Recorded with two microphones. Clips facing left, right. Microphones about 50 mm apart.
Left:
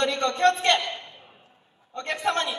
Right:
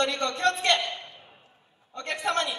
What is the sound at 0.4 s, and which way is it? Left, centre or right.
Speech, left.